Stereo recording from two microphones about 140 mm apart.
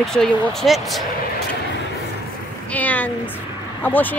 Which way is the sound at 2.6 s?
10° left (ahead or behind).